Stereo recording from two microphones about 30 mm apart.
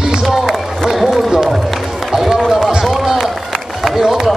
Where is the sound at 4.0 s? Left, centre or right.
Right.